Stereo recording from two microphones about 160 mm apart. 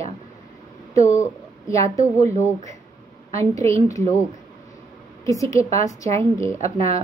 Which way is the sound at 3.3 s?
20° left (ahead or behind).